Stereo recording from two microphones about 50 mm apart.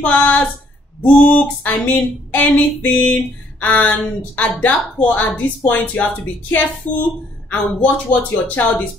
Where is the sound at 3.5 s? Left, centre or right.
Left.